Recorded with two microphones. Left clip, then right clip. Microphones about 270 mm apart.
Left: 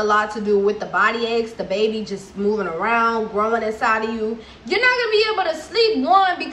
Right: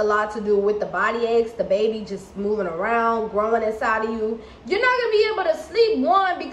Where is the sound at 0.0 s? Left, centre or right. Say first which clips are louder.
Left 2 dB; centre.